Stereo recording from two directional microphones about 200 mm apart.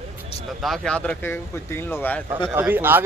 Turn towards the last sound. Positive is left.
turn(degrees=-10)  # may be behind; listen again after turning